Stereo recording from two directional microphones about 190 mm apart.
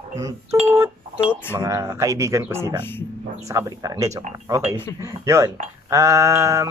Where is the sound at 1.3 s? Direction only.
10° left (ahead or behind).